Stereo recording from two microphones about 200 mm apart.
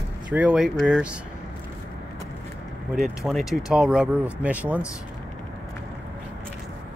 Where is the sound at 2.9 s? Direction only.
Centre (ahead or behind).